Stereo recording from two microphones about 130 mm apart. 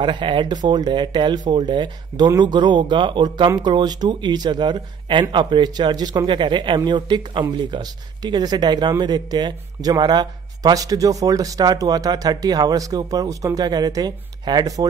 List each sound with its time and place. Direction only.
0.0 s a man's voice: 40° right (ahead or behind)